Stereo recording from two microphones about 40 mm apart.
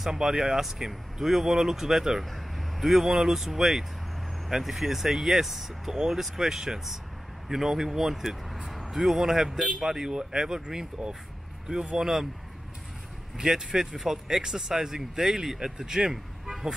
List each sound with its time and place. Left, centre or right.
0.0 s speech: centre
13.4 s speech: centre